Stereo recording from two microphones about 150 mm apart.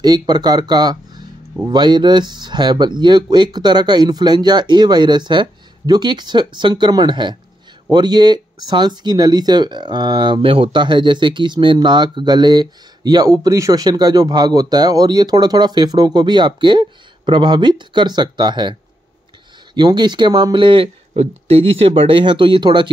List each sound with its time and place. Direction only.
0.0 s speech: 25° right (ahead or behind)